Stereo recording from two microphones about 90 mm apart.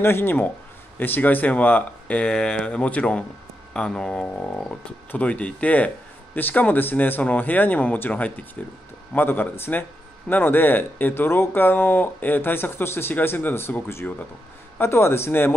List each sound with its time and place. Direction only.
0.0 s speech: 25° left (ahead or behind)